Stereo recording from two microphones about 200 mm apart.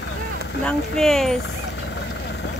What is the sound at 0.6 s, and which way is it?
Speech, 5° left (ahead or behind).